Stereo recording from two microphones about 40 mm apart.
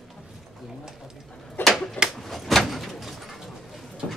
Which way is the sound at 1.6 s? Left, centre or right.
Centre.